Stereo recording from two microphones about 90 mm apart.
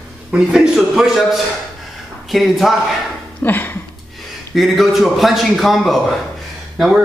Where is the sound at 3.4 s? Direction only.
20° left (ahead or behind).